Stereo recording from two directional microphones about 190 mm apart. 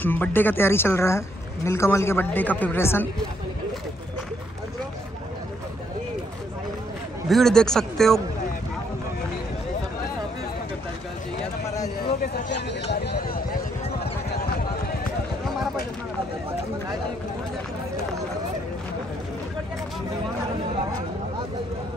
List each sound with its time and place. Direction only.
0.0 s speech: 10° left (ahead or behind)
7.2 s a man's voice: centre (ahead or behind)
12.9 s a sound: 60° left (ahead or behind)